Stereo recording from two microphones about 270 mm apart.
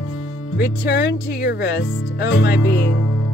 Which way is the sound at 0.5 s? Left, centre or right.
Left.